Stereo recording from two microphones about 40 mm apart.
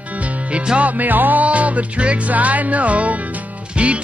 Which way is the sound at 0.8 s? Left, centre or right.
Right.